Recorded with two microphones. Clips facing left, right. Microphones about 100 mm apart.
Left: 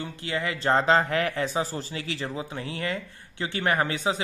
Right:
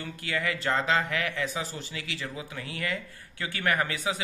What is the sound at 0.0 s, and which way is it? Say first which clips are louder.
Speech: left 2 dB; 25° left (ahead or behind).